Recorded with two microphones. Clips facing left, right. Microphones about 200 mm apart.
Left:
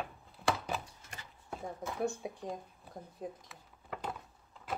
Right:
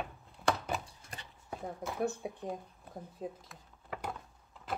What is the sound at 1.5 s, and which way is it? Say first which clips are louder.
Speech: right 1 dB; 5° right (ahead or behind).